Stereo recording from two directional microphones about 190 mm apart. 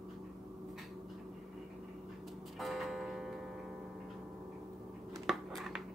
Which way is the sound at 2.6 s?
Centre (ahead or behind).